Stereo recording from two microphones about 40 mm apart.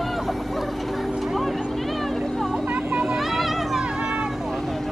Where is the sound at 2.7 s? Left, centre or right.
Right.